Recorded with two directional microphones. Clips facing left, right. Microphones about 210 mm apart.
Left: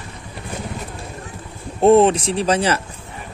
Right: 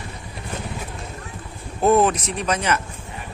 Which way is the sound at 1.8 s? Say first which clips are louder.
Left 5 dB; 30° left (ahead or behind).